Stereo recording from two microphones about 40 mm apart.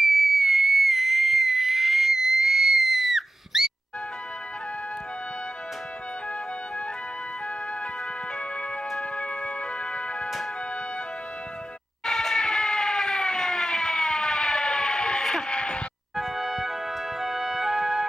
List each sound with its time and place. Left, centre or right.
0.0 s whistle: centre
9.1 s organ: left
12.1 s siren: centre
16.2 s music: centre